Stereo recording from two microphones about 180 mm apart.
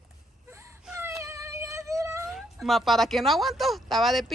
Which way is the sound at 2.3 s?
Centre (ahead or behind).